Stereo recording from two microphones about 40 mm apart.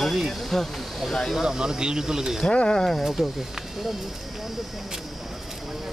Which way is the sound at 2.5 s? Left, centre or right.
Left.